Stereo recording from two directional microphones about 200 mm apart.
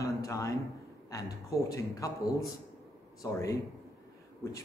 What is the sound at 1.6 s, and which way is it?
Speech, 15° left (ahead or behind).